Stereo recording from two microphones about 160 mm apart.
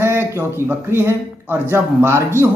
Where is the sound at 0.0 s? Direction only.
15° right (ahead or behind).